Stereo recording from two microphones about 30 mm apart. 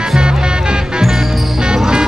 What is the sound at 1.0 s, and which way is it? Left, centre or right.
Music, centre.